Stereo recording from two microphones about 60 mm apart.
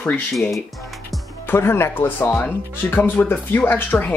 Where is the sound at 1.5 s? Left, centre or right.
Left.